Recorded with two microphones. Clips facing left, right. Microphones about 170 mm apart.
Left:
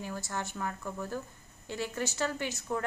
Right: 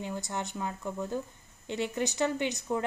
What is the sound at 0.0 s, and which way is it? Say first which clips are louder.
A woman's voice: right 2 dB; 20° right (ahead or behind).